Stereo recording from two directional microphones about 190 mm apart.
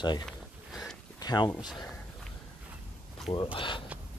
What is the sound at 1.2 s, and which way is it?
Speech, 20° left (ahead or behind).